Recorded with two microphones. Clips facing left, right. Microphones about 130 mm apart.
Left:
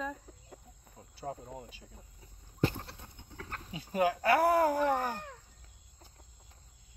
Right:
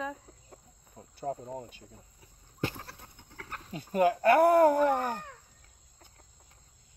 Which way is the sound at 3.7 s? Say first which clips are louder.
Right 4 dB; 50° right (ahead or behind).